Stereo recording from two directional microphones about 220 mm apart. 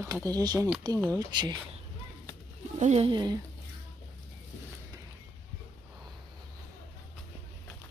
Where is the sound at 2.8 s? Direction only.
30° right (ahead or behind).